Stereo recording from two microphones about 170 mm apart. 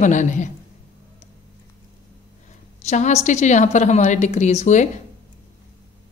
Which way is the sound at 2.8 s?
45° left (ahead or behind).